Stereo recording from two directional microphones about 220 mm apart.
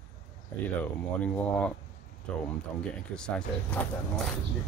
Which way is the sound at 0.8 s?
5° left (ahead or behind).